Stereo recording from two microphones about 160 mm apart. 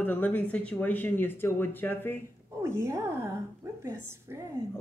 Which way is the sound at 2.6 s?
15° right (ahead or behind).